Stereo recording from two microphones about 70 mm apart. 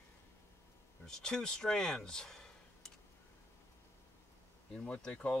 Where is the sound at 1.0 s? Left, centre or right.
Centre.